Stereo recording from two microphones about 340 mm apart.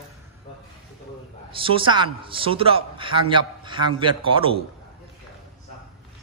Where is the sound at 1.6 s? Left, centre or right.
Centre.